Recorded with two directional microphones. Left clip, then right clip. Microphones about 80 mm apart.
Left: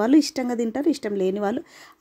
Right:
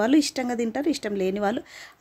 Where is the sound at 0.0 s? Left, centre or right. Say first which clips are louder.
Left 2 dB; left.